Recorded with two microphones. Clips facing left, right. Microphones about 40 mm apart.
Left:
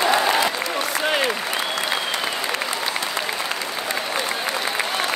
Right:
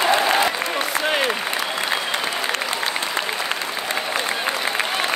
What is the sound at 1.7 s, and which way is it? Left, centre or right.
Applause, right.